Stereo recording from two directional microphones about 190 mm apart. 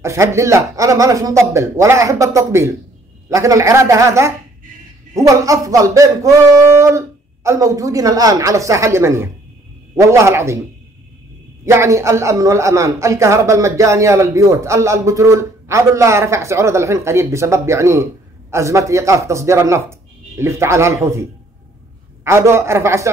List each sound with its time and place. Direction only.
0.0 s a man's voice: 15° right (ahead or behind)
11.6 s a man's voice: 15° right (ahead or behind)